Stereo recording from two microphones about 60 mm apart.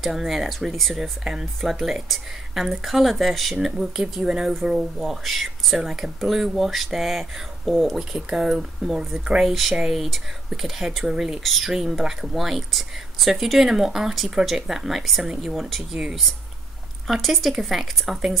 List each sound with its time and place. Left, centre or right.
0.0 s speech: centre
11.4 s speech: centre
17.1 s speech: centre